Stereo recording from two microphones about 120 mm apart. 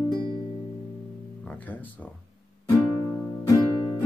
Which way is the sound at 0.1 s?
35° right (ahead or behind).